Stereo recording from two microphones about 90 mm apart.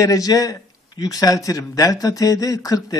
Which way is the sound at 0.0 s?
40° left (ahead or behind).